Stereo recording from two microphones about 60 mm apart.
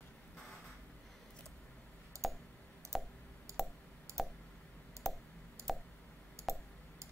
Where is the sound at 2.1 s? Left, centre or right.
Right.